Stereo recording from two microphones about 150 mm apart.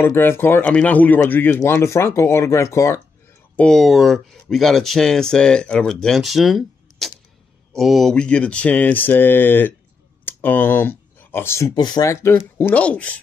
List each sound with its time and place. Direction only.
0.0 s speech: 15° left (ahead or behind)
3.5 s speech: 5° left (ahead or behind)
11.7 s speech: 30° left (ahead or behind); by 13.2 s 10° left (ahead or behind)